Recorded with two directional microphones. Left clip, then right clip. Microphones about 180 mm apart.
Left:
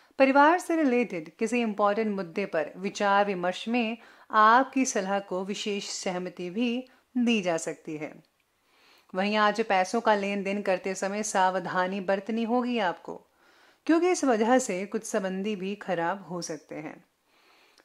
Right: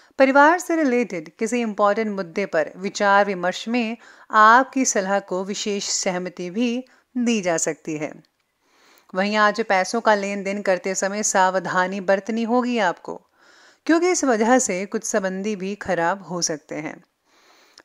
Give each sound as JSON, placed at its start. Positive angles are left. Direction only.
{"t": 0.1, "sound": "a woman's voice", "side_deg": -25}